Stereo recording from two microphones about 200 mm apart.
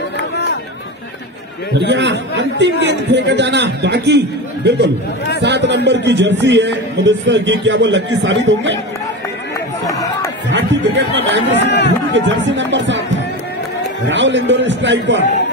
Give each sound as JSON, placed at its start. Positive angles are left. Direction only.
{"t": 1.8, "sound": "a man's voice", "side_deg": -60}
{"t": 9.8, "sound": "a sound", "side_deg": 15}
{"t": 10.5, "sound": "a man's voice", "side_deg": -65}
{"t": 11.5, "sound": "speech", "side_deg": 60}
{"t": 12.1, "sound": "speech", "side_deg": -65}
{"t": 14.0, "sound": "a man's voice", "side_deg": -65}